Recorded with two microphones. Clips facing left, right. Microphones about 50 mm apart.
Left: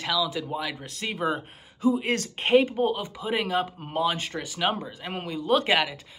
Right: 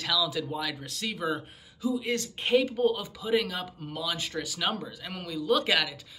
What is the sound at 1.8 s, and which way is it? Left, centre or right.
Speech, left.